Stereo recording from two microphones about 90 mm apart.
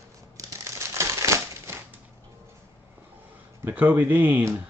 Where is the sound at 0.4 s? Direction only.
35° right (ahead or behind).